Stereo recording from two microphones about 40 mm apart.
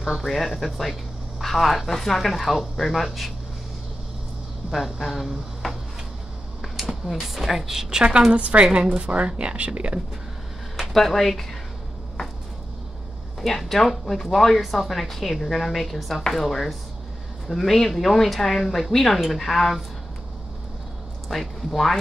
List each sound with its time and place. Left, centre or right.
0.2 s speech: centre
4.6 s a woman's voice: centre
8.3 s a woman's voice: right
10.8 s speech: centre
13.5 s a woman's voice: centre
21.3 s speech: centre